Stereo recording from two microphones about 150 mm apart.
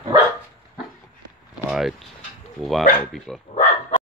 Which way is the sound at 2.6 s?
Centre (ahead or behind).